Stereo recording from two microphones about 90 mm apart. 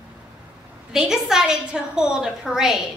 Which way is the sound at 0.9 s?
5° right (ahead or behind).